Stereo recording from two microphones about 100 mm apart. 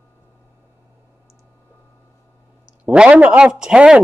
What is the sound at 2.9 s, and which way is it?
Speech, 15° right (ahead or behind).